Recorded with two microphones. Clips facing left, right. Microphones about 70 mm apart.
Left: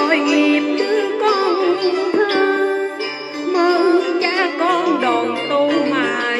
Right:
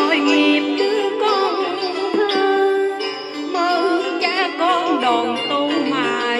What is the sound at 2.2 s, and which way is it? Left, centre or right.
Music, left.